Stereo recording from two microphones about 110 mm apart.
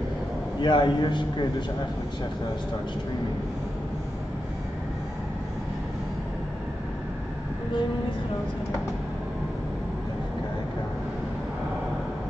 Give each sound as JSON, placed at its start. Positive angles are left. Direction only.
{"t": 0.6, "sound": "a man's voice", "side_deg": 45}